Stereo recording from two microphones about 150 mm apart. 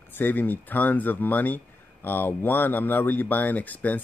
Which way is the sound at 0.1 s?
10° left (ahead or behind).